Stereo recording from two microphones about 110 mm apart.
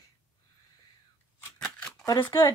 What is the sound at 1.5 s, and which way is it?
Scissors, 5° left (ahead or behind).